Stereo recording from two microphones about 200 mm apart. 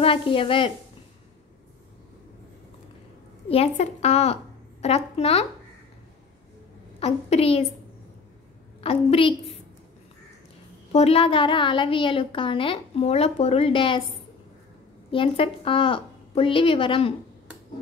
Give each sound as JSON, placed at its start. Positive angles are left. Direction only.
{"t": 0.0, "sound": "a woman's voice", "side_deg": 25}
{"t": 3.4, "sound": "a woman's voice", "side_deg": 30}
{"t": 7.0, "sound": "a woman's voice", "side_deg": 30}
{"t": 8.8, "sound": "a woman's voice", "side_deg": 30}
{"t": 10.9, "sound": "a woman's voice", "side_deg": 30}
{"t": 15.0, "sound": "a woman's voice", "side_deg": 25}